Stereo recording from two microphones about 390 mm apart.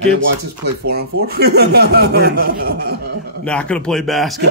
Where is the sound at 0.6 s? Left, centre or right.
Right.